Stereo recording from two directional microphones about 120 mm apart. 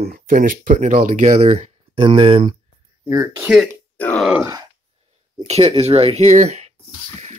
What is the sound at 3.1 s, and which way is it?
Speech, 25° right (ahead or behind).